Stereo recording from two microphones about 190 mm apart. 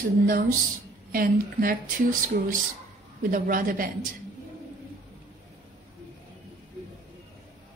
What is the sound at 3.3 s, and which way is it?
Speech, 45° right (ahead or behind).